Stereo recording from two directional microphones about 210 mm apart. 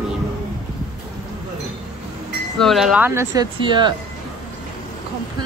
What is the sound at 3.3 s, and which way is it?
Speech, 20° right (ahead or behind).